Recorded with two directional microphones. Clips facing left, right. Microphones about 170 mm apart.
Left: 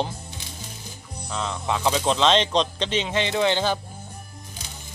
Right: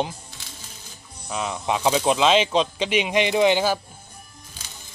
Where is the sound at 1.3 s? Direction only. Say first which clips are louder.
Right 2 dB; 15° right (ahead or behind).